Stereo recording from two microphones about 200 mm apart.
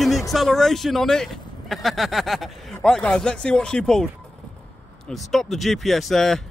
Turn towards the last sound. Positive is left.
turn(degrees=0)  # may be behind; listen again after turning